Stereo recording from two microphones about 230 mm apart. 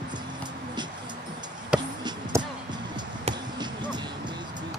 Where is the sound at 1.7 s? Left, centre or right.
Centre.